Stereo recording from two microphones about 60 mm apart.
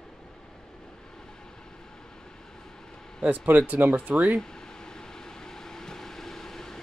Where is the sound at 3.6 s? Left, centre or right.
Right.